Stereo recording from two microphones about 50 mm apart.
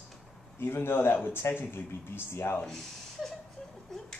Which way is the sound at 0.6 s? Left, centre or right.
Left.